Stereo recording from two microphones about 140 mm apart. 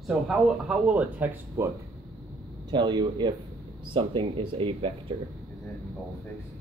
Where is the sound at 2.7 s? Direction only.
30° right (ahead or behind).